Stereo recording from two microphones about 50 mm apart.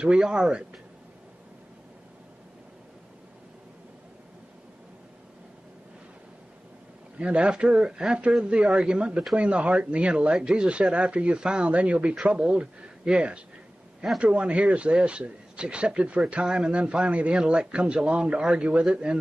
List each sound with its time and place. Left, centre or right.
0.0 s speech: centre
7.2 s speech: right